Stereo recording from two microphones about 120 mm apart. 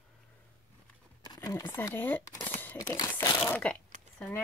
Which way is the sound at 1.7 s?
20° left (ahead or behind).